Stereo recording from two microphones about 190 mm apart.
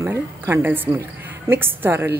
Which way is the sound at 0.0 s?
10° right (ahead or behind).